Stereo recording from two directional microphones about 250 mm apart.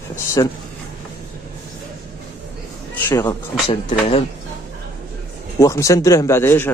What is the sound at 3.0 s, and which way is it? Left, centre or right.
Speech, centre.